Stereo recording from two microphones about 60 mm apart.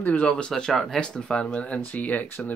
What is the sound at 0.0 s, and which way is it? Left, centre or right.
Speech, left.